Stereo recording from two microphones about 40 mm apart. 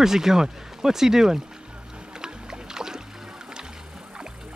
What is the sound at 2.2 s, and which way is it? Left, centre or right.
Music, centre.